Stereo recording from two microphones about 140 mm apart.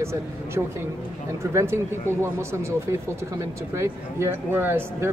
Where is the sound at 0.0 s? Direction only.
20° right (ahead or behind).